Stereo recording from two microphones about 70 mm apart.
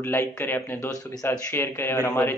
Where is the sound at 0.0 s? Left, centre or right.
Left.